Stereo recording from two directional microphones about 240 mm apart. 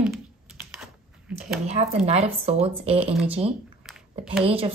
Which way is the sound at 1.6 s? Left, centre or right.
Right.